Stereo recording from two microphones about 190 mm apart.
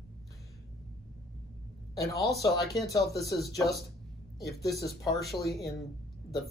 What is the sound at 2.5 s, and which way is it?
Speech, centre (ahead or behind).